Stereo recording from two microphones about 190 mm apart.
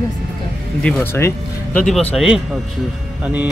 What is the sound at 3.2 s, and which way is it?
Speech, 10° right (ahead or behind).